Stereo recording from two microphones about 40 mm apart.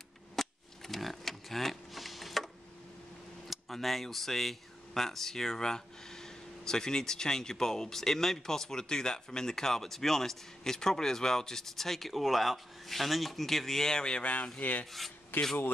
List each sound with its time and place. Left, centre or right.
0.4 s a sound: centre
3.4 s speech: centre; by 14.3 s left
14.6 s rub: left
14.9 s speech: centre